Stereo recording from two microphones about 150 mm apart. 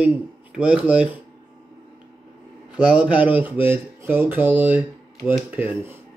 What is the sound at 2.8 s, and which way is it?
Speech, 10° right (ahead or behind).